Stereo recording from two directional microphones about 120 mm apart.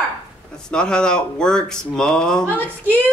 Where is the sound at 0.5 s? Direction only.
5° left (ahead or behind).